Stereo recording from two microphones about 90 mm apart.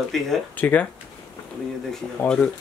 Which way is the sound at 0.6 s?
15° left (ahead or behind).